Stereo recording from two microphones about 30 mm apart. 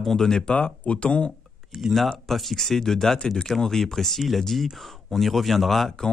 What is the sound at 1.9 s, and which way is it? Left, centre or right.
Speech, centre.